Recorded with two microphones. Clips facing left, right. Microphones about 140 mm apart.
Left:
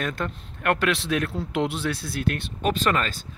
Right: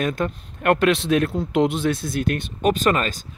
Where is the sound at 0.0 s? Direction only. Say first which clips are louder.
Right 6 dB; 15° right (ahead or behind).